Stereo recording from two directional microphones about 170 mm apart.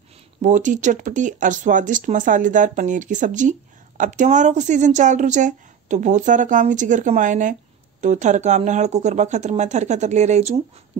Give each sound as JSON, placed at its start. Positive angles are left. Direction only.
{"t": 0.4, "sound": "speech", "side_deg": -45}